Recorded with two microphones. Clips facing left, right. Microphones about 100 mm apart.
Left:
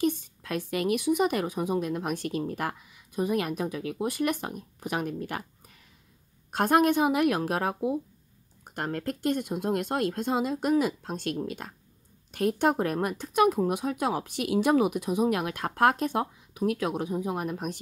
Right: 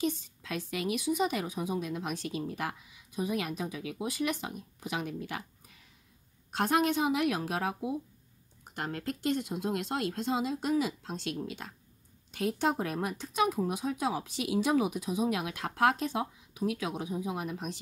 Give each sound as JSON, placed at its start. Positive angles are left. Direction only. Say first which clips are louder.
{"t": 0.0, "sound": "a woman's voice", "louder": "left 5 dB", "side_deg": 55}
{"t": 6.5, "sound": "a woman's voice", "louder": "left 5 dB", "side_deg": 50}